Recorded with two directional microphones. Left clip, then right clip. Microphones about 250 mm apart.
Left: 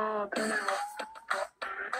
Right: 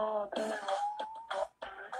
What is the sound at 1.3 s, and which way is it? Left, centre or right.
Music, left.